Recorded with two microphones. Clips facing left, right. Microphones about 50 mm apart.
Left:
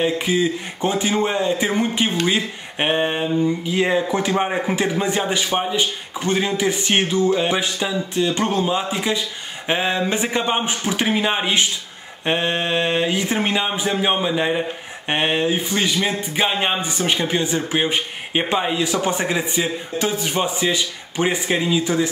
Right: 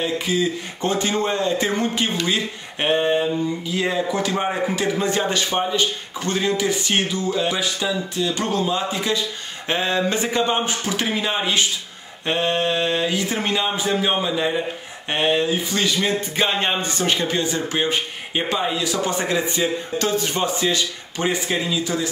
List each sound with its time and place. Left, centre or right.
0.0 s speech: left